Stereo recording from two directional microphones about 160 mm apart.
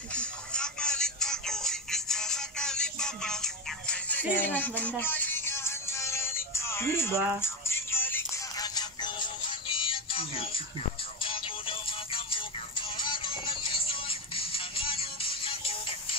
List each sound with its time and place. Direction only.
0.1 s music: 5° left (ahead or behind)
8.5 s music: 25° left (ahead or behind)